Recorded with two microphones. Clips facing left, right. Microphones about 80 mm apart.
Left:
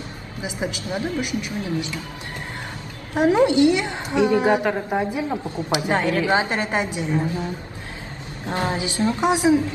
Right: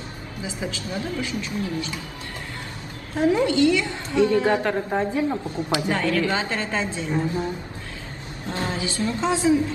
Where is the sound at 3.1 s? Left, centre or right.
Left.